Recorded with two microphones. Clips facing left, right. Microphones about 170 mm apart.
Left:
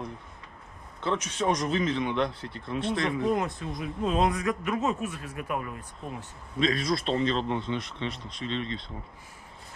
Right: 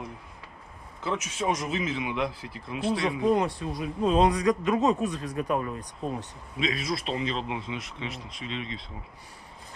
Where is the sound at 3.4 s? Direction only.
30° right (ahead or behind).